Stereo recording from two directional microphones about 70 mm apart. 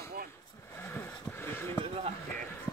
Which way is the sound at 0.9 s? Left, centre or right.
Left.